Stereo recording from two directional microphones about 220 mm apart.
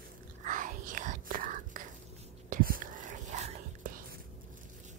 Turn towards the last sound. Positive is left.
turn(degrees=-40)  # may be behind; listen again after turning